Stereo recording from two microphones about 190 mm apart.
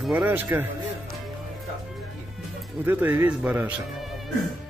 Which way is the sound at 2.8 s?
10° right (ahead or behind).